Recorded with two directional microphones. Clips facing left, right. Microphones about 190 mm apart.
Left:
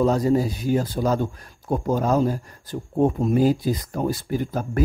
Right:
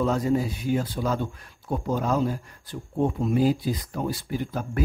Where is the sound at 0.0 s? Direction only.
40° left (ahead or behind).